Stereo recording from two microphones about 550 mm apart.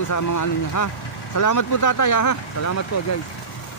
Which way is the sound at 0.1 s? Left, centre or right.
Left.